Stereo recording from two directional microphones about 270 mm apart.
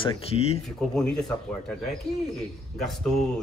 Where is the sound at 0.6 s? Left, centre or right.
Centre.